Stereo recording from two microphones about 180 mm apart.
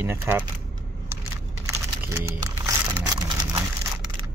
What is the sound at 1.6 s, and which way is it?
Typing, 15° right (ahead or behind).